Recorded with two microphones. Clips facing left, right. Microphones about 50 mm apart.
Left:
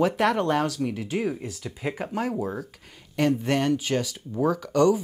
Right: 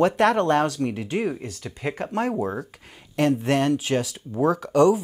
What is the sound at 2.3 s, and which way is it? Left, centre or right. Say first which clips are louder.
Speech: right 3 dB; centre.